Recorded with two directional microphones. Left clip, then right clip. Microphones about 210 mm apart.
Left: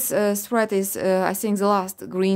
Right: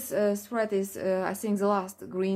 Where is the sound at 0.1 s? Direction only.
50° left (ahead or behind).